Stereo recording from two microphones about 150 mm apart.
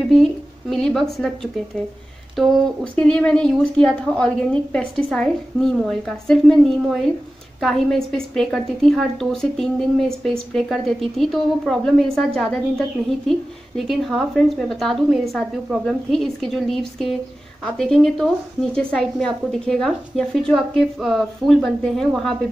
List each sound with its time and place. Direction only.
0.1 s speech: centre (ahead or behind)